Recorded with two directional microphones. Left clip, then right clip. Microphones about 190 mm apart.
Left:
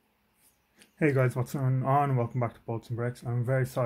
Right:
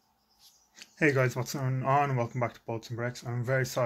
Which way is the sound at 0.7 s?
5° left (ahead or behind).